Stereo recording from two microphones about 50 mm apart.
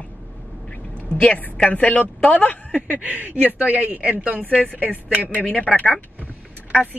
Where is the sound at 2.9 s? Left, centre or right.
Right.